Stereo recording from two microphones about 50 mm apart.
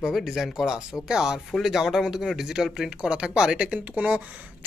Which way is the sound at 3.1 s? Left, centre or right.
Centre.